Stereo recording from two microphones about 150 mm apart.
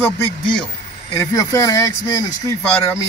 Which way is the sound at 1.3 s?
20° left (ahead or behind).